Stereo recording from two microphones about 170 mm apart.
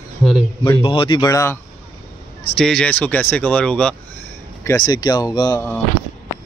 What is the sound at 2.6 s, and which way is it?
Speech, 5° left (ahead or behind).